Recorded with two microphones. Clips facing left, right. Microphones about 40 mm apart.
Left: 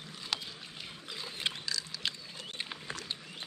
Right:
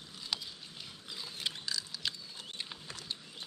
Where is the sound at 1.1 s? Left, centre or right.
Centre.